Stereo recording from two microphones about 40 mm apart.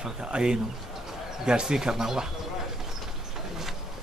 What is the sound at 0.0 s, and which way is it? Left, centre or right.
Speech, centre.